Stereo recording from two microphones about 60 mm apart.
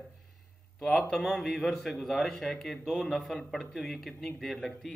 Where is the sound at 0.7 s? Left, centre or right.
Centre.